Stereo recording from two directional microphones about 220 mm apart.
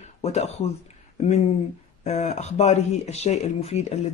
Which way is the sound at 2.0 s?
30° left (ahead or behind).